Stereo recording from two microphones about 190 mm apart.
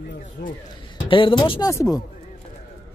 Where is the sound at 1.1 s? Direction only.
25° left (ahead or behind).